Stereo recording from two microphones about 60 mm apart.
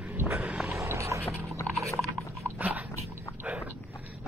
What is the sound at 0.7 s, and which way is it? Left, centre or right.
Vehicle, right.